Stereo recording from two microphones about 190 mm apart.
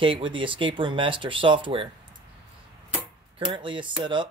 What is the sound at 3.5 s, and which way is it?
Speech, 25° right (ahead or behind).